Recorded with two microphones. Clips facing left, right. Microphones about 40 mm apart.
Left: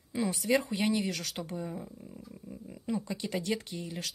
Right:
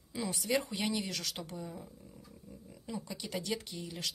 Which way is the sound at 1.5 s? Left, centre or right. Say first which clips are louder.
Left 6 dB; left.